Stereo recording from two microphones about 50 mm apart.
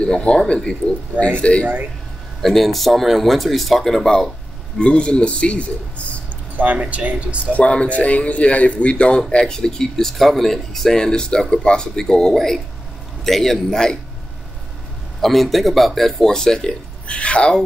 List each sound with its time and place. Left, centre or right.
0.0 s speech: left
2.4 s speech: centre
4.7 s speech: left
6.5 s speech: right
7.5 s speech: left
9.3 s speech: centre
15.2 s speech: centre; by 17.6 s left